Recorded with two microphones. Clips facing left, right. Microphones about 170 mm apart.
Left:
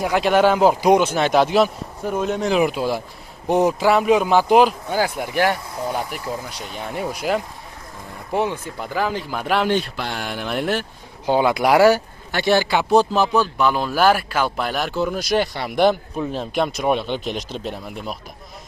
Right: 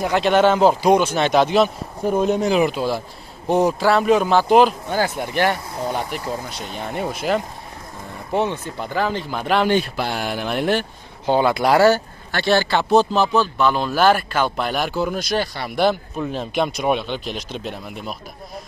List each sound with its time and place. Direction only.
0.0 s a man's voice: 5° left (ahead or behind)
2.0 s speech: 30° right (ahead or behind)
2.3 s speech: 5° right (ahead or behind)
2.6 s a man's voice: 10° left (ahead or behind)
15.1 s a man's voice: 10° left (ahead or behind)
16.2 s speech: centre (ahead or behind)